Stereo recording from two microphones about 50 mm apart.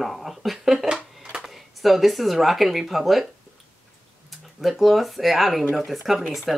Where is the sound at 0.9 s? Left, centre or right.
Centre.